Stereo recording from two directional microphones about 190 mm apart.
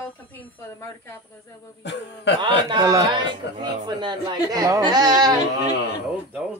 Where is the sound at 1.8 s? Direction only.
70° left (ahead or behind).